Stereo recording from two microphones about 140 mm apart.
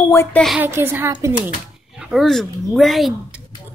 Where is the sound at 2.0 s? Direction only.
Centre (ahead or behind).